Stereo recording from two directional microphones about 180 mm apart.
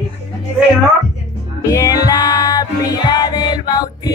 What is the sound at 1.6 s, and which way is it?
Music, 20° left (ahead or behind).